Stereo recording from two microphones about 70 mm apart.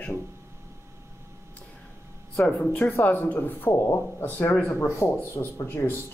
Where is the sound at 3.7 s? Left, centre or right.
Left.